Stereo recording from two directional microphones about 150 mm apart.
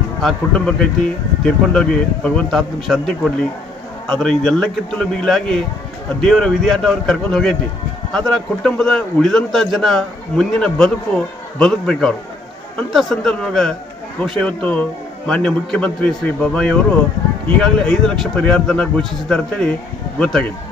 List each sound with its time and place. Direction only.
0.2 s a man's voice: 5° left (ahead or behind)